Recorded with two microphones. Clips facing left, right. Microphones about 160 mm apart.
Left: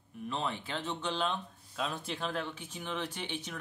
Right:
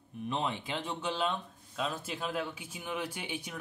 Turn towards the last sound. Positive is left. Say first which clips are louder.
# even
turn(degrees=-10)  # may be behind; listen again after turning